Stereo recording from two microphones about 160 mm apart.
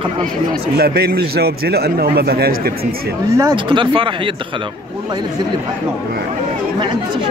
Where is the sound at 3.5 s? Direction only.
30° right (ahead or behind).